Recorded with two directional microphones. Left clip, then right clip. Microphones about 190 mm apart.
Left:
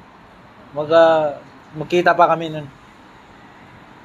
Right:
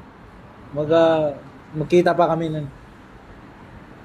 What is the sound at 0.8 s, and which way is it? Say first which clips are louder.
A man's voice: left 4 dB; 30° right (ahead or behind).